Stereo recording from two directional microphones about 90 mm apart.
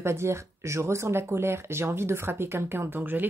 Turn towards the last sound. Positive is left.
turn(degrees=-20)  # may be behind; listen again after turning